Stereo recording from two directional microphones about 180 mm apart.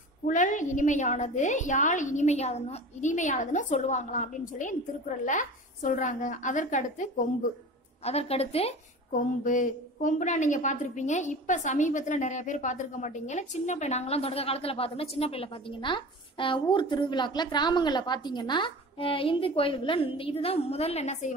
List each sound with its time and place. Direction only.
0.3 s a woman's voice: 45° left (ahead or behind)
9.4 s a woman's voice: 45° left (ahead or behind)